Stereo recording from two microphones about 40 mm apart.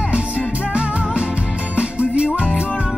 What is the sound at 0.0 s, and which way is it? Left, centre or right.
Music, right.